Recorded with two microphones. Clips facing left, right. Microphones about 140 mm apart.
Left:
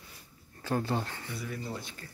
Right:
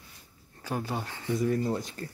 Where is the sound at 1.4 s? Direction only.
45° right (ahead or behind).